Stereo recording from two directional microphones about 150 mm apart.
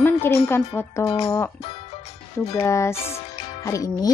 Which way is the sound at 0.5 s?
20° left (ahead or behind).